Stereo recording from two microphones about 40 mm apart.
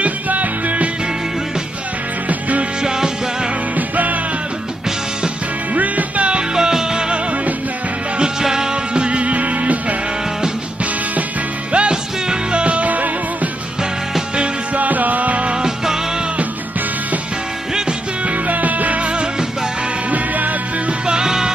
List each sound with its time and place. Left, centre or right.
0.0 s music: right
2.8 s music: centre
3.7 s music: right
5.8 s music: right
6.5 s music: centre
8.2 s music: centre; by 9.9 s right
11.7 s music: right
14.3 s music: right
14.8 s music: right
15.5 s music: centre
18.2 s music: right
20.1 s music: right
21.1 s music: centre